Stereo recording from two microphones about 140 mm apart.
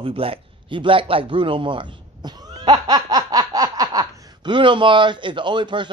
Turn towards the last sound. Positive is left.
turn(degrees=-35)  # may be behind; listen again after turning